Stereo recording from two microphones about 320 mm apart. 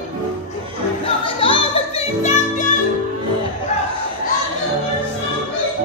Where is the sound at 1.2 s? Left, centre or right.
Centre.